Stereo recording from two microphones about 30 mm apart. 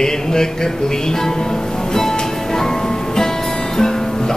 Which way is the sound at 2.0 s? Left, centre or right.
Centre.